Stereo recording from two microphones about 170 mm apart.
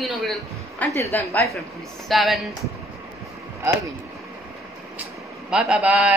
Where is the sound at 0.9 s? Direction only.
15° left (ahead or behind).